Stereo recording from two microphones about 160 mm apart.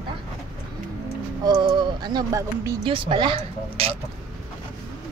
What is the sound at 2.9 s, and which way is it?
Speech, 30° right (ahead or behind).